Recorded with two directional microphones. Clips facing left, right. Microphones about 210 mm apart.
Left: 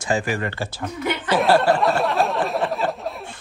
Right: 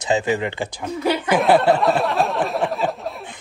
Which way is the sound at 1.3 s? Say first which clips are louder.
Right 1 dB; centre (ahead or behind).